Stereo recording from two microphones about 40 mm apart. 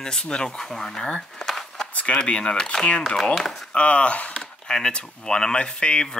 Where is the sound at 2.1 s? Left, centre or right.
Left.